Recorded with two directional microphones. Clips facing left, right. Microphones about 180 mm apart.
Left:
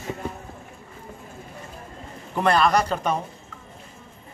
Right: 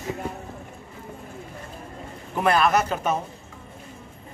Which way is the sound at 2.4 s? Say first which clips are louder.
Left 1 dB; 5° right (ahead or behind).